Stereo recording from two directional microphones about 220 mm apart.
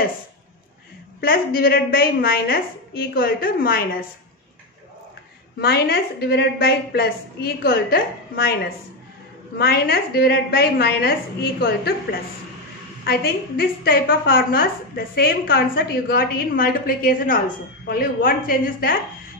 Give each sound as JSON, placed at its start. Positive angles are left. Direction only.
{"t": 1.2, "sound": "a woman's voice", "side_deg": 40}
{"t": 5.6, "sound": "a woman's voice", "side_deg": 45}